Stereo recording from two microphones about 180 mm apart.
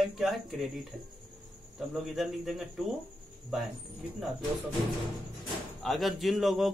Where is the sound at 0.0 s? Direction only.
Centre (ahead or behind).